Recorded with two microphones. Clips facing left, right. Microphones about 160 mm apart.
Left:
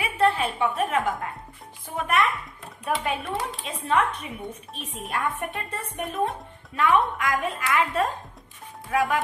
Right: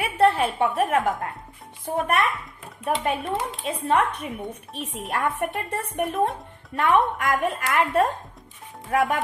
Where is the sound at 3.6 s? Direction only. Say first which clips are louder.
Right 2 dB; 55° right (ahead or behind).